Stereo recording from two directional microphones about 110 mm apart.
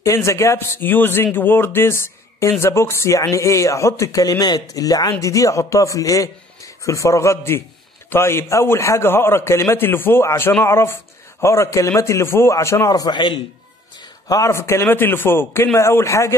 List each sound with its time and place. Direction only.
0.0 s a man's voice: 25° left (ahead or behind); by 13.4 s 45° left (ahead or behind)
14.2 s a man's voice: 30° left (ahead or behind)